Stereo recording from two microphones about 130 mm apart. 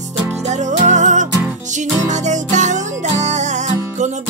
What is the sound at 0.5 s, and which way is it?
Music, 70° right (ahead or behind).